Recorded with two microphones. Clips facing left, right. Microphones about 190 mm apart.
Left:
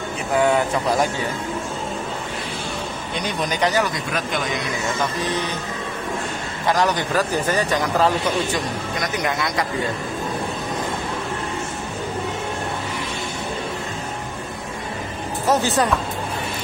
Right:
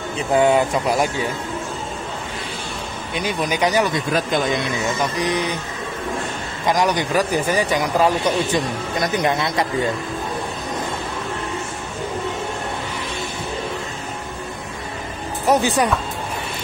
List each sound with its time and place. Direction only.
0.4 s speech: 20° right (ahead or behind)
3.2 s a man's voice: 10° right (ahead or behind)
5.2 s a man's voice: 15° right (ahead or behind)
6.7 s a man's voice: 15° right (ahead or behind)
9.0 s speech: 25° right (ahead or behind)
15.4 s a man's voice: 15° right (ahead or behind)